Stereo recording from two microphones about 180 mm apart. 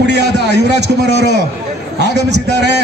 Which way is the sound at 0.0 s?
70° right (ahead or behind).